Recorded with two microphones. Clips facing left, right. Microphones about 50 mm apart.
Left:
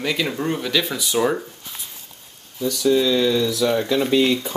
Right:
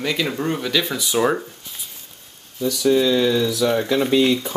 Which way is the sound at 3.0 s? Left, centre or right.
Centre.